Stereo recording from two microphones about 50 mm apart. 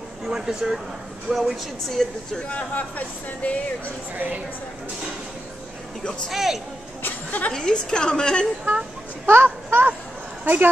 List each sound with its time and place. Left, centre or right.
0.3 s speech: centre
1.3 s speech: centre
2.5 s speech: left
6.3 s speech: centre
7.0 s a sound: left
7.5 s a woman's voice: centre
9.2 s speech: right